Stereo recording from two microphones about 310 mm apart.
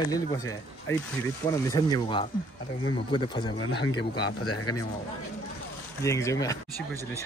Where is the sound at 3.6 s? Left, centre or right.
Left.